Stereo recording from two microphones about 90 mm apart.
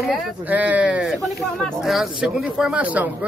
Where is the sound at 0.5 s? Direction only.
15° right (ahead or behind).